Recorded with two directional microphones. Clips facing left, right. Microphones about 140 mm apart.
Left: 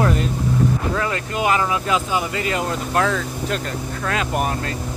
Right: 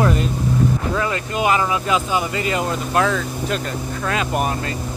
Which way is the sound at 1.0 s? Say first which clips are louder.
Right 1 dB; 20° right (ahead or behind).